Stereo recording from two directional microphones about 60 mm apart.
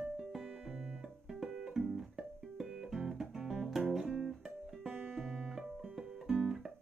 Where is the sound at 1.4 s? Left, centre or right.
Centre.